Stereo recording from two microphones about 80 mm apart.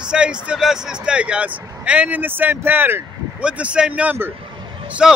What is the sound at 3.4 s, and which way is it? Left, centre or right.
A man's voice, centre.